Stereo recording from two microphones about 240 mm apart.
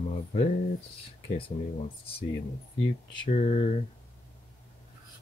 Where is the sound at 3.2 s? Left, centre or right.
Left.